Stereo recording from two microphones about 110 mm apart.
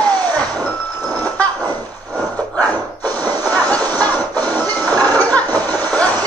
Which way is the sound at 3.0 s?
35° right (ahead or behind).